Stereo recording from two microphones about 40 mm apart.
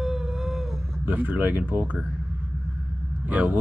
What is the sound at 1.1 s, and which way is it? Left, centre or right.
Speech, right.